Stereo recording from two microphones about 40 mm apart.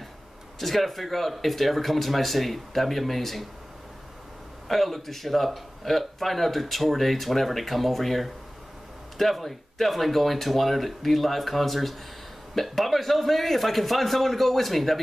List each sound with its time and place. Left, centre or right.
0.6 s speech: centre
4.6 s speech: centre